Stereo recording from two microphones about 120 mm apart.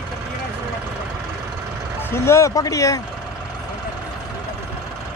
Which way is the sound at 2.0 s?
20° left (ahead or behind).